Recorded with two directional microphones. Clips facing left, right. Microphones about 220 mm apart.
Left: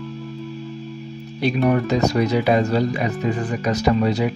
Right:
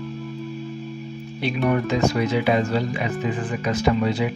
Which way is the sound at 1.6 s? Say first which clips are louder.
Left 1 dB; 40° left (ahead or behind).